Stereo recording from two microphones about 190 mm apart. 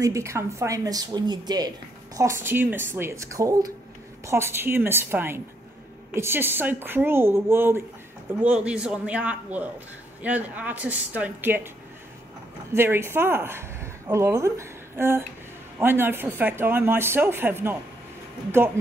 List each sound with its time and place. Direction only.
0.0 s a woman's voice: 15° right (ahead or behind)
12.7 s speech: 10° right (ahead or behind)